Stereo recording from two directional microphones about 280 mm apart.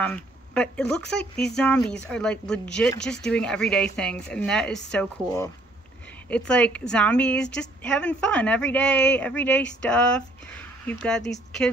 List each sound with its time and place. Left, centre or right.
0.0 s speech: centre